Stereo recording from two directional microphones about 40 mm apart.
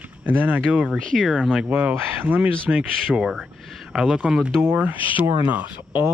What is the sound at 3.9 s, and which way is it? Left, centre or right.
Speech, centre.